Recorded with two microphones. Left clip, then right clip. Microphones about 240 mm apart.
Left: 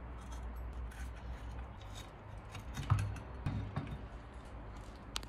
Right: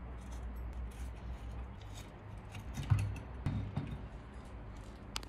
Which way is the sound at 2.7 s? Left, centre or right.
Centre.